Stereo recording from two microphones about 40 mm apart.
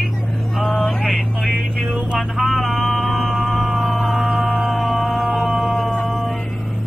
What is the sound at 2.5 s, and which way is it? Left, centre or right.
Music, centre.